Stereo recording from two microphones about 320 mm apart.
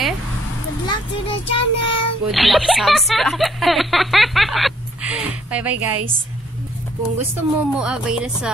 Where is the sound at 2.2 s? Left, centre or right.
Centre.